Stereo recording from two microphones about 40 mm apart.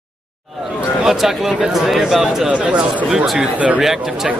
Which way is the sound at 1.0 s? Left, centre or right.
Centre.